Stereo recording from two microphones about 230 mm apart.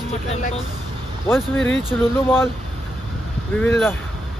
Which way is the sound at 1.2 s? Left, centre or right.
Centre.